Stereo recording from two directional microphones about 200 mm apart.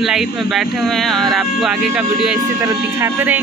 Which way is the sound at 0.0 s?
Centre (ahead or behind).